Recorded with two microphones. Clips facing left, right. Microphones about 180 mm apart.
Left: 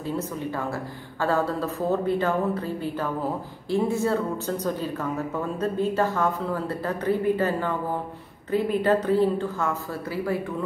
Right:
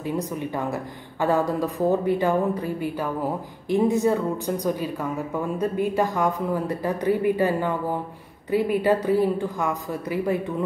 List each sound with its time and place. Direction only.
0.0 s speech: 15° right (ahead or behind)